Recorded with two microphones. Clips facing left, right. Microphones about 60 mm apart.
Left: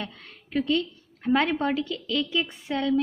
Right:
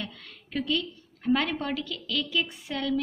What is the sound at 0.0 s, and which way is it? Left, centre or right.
A woman's voice, left.